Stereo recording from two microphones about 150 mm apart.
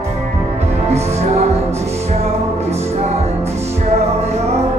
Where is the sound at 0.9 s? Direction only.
45° right (ahead or behind).